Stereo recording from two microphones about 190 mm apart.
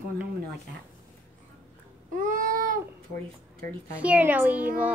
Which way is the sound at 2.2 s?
45° right (ahead or behind).